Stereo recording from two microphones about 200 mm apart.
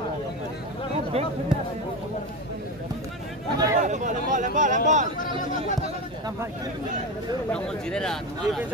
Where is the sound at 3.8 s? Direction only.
40° right (ahead or behind).